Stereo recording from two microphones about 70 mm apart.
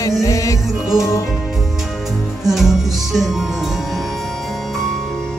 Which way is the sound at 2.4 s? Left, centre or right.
Centre.